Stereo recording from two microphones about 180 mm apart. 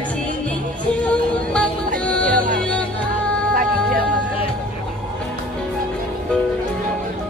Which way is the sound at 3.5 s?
50° right (ahead or behind).